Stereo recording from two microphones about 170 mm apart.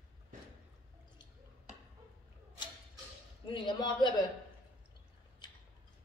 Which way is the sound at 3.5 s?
25° left (ahead or behind).